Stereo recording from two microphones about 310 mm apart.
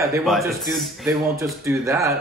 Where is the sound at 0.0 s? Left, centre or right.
Centre.